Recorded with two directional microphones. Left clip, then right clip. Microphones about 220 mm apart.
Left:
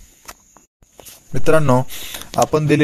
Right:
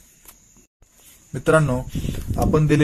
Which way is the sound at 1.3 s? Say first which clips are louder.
Left 4 dB; 30° left (ahead or behind).